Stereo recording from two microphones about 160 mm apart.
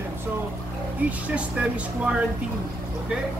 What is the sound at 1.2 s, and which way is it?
Speech, 10° right (ahead or behind).